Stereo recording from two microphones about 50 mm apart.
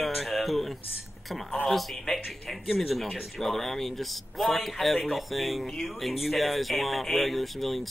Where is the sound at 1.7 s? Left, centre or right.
Centre.